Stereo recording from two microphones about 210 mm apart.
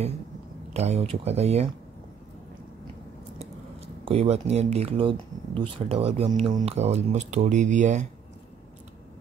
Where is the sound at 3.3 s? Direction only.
30° right (ahead or behind).